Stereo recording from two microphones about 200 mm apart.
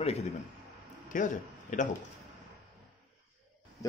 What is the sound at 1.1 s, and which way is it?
Speech, 40° left (ahead or behind).